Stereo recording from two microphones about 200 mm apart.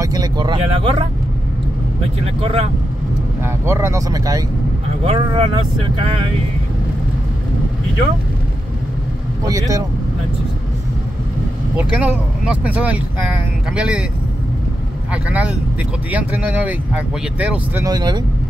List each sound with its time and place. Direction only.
0.0 s speech: 20° right (ahead or behind)
2.2 s speech: 30° right (ahead or behind)
3.4 s speech: 10° right (ahead or behind)
9.5 s speech: 15° right (ahead or behind)
11.7 s speech: 10° right (ahead or behind)
15.2 s speech: 5° right (ahead or behind)
17.8 s speech: 20° right (ahead or behind)